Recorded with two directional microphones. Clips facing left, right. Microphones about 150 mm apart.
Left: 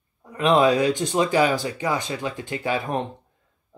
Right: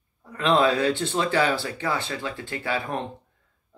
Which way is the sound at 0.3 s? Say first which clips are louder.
Left 3 dB; 15° left (ahead or behind).